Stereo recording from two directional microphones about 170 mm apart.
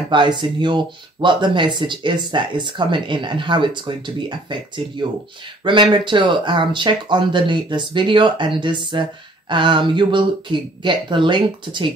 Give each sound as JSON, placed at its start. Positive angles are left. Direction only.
{"t": 0.1, "sound": "speech", "side_deg": -30}